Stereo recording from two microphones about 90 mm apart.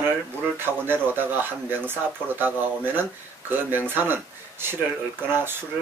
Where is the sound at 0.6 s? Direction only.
25° right (ahead or behind).